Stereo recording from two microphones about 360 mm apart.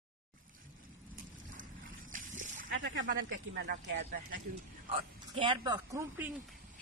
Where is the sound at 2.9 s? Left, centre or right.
Right.